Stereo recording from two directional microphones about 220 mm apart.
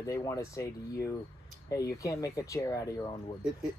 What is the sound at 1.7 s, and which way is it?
Speech, 15° left (ahead or behind).